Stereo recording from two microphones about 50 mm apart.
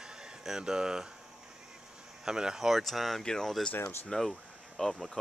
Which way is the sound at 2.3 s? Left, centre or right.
Centre.